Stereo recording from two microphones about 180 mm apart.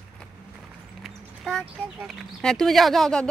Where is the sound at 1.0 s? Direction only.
Centre (ahead or behind).